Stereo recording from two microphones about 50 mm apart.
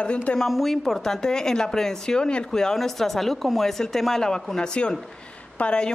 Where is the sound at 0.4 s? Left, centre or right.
Centre.